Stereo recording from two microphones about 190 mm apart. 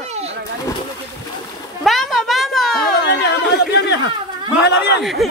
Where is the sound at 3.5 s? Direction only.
60° left (ahead or behind).